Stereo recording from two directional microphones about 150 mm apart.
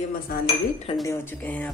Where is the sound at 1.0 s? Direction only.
15° left (ahead or behind).